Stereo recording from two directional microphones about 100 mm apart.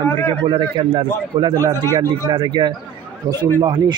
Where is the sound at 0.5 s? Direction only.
50° right (ahead or behind).